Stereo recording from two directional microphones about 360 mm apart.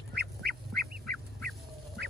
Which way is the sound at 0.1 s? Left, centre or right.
Right.